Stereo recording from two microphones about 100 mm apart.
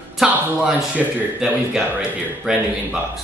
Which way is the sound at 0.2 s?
5° right (ahead or behind).